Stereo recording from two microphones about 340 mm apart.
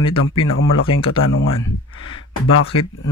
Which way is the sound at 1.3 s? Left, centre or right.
Left.